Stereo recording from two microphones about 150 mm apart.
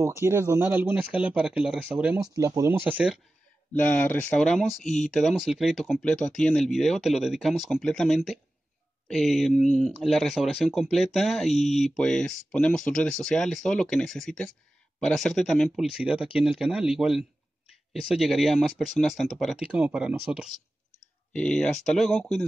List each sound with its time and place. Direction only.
0.0 s speech: 15° right (ahead or behind)
2.3 s speech: 20° right (ahead or behind)
2.9 s speech: 5° right (ahead or behind)
3.7 s speech: 10° left (ahead or behind); by 20.5 s 5° right (ahead or behind)
21.3 s speech: 5° left (ahead or behind)